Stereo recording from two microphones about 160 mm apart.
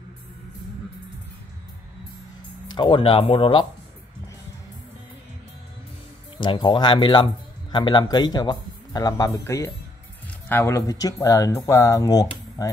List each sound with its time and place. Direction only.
2.7 s speech: 30° left (ahead or behind)
6.3 s speech: 30° left (ahead or behind)